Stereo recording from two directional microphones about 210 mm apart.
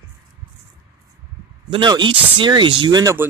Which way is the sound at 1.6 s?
20° right (ahead or behind).